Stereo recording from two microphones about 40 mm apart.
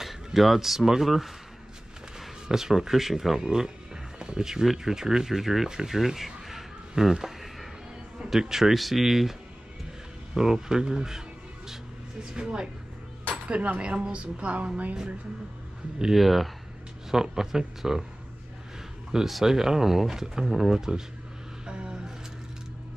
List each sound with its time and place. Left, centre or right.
0.0 s speech: centre
10.3 s a sound: centre
12.2 s speech: right
13.3 s a woman's voice: right
16.2 s speech: centre
19.1 s speech: centre
21.6 s vehicle: right